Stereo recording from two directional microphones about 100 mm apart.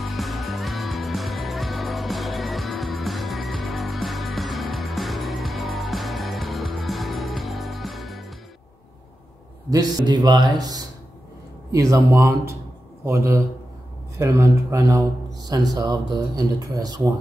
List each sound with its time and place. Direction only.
0.0 s music: centre (ahead or behind)
9.7 s a man's voice: 40° right (ahead or behind)